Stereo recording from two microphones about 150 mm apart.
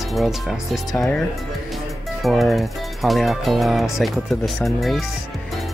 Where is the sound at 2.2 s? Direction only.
Centre (ahead or behind).